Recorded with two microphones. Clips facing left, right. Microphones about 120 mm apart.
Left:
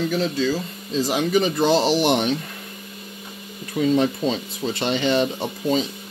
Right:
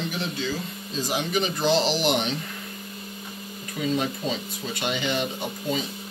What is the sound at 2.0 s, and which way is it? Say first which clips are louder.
Speech: left 5 dB; 50° left (ahead or behind).